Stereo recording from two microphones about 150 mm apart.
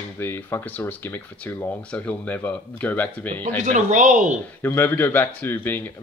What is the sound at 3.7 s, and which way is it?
Speech, 55° right (ahead or behind).